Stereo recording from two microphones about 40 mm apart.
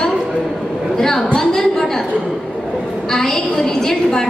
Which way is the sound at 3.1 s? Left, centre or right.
Centre.